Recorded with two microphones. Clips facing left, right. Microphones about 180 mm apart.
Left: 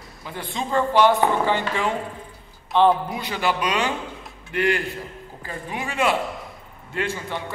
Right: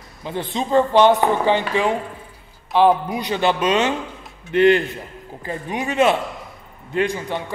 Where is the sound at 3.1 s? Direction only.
20° right (ahead or behind).